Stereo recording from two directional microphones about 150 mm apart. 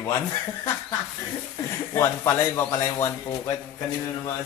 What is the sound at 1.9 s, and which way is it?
Speech, 20° left (ahead or behind).